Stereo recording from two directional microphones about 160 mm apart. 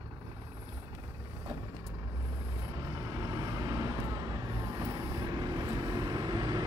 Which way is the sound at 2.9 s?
20° right (ahead or behind).